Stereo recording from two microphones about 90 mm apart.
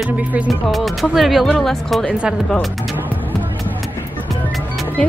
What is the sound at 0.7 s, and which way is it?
Speech, centre (ahead or behind).